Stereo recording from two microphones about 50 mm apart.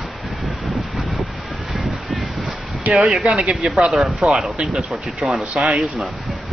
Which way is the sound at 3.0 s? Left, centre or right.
Centre.